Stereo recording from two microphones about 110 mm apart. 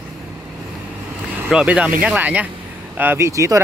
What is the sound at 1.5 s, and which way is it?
Speech, 10° right (ahead or behind).